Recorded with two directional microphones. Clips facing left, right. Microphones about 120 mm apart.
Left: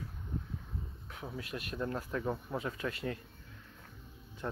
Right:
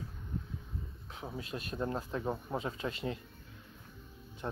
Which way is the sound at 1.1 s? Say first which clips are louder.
Right 1 dB; 25° right (ahead or behind).